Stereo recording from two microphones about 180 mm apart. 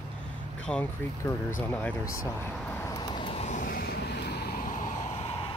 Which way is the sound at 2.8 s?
20° left (ahead or behind).